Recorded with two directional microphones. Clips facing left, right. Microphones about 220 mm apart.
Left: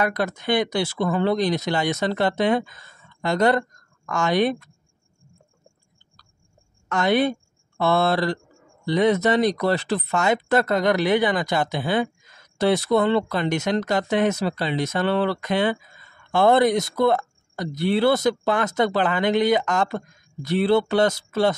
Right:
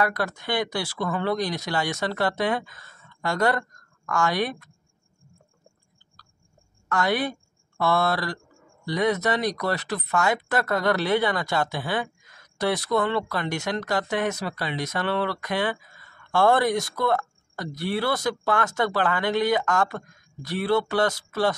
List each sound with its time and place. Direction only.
0.0 s speech: 20° left (ahead or behind)
6.9 s speech: 25° left (ahead or behind)